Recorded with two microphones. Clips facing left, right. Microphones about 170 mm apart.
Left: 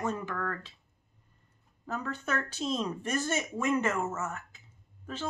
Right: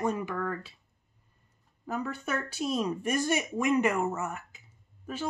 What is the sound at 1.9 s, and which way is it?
Speech, 10° right (ahead or behind).